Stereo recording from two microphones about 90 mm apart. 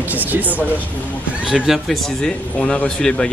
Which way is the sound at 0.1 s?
20° right (ahead or behind).